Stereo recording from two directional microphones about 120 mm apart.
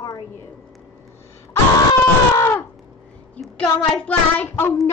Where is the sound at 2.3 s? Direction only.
20° left (ahead or behind).